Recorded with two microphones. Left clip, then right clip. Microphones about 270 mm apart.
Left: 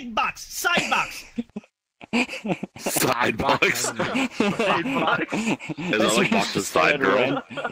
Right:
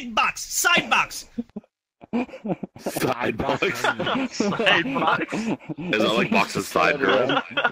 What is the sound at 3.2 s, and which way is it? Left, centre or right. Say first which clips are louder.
Speech: left 3 dB; centre.